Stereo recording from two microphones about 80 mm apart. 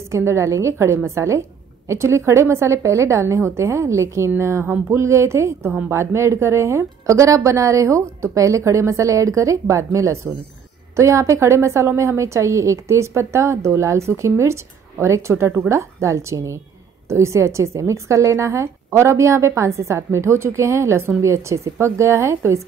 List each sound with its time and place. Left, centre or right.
0.1 s a woman's voice: right